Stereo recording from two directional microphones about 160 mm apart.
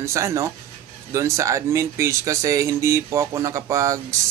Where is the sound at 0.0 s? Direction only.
20° right (ahead or behind).